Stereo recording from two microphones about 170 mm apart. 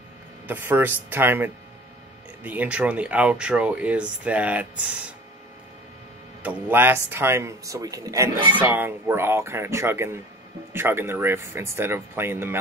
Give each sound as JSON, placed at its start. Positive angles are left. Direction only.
{"t": 0.5, "sound": "speech", "side_deg": -10}
{"t": 6.4, "sound": "speech", "side_deg": -10}